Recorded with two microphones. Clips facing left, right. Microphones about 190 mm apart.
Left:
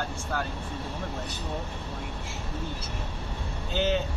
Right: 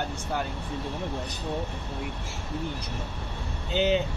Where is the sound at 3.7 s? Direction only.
15° right (ahead or behind).